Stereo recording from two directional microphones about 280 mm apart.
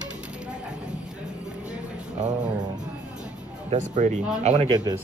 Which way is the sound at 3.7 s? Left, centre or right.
Right.